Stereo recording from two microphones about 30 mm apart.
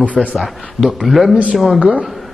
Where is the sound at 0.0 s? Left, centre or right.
Left.